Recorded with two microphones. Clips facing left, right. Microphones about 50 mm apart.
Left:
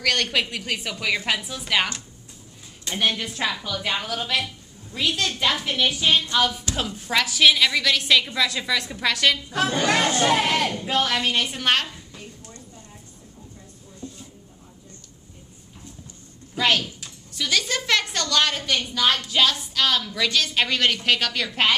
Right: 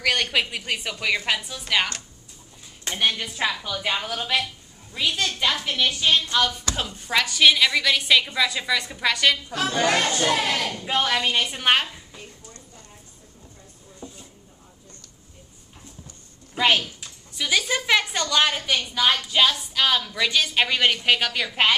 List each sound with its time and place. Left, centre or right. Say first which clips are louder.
0.0 s a woman's voice: even; centre
2.9 s a woman's voice: even; centre
9.5 s speech: left 3 dB; left
9.8 s speech: even; centre
10.1 s speech: left 2 dB; left
10.9 s a woman's voice: right 3 dB; centre
16.5 s a woman's voice: right 1 dB; centre